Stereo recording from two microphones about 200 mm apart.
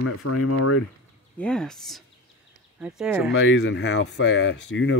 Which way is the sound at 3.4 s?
65° left (ahead or behind).